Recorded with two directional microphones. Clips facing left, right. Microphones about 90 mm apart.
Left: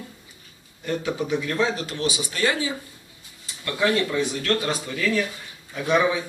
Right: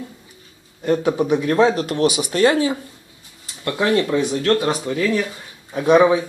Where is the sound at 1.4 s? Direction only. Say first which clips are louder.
Right 11 dB; 30° right (ahead or behind).